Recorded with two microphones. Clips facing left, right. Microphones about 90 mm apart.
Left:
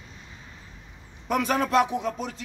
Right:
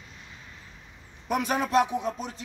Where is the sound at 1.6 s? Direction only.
90° left.